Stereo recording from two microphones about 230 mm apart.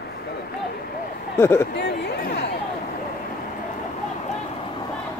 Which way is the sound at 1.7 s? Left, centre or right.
Left.